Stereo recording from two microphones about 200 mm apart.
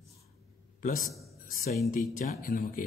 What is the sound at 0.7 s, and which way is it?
A man's voice, 40° left (ahead or behind).